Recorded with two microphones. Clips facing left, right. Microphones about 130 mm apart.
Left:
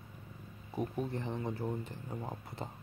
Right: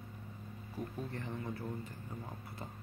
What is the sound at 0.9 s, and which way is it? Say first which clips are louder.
Speech: left 5 dB; 20° left (ahead or behind).